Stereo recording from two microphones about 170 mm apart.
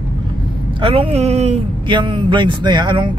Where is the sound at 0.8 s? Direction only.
35° right (ahead or behind).